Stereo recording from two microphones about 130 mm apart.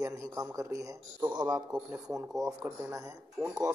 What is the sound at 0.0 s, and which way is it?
Speech, 25° right (ahead or behind).